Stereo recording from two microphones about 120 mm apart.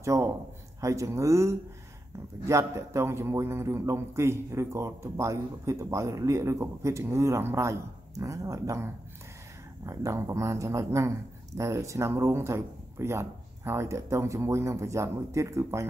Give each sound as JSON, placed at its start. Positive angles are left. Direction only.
{"t": 0.0, "sound": "a man's voice", "side_deg": -25}